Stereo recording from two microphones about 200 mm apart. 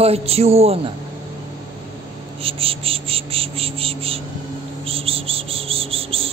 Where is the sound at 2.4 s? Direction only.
30° right (ahead or behind).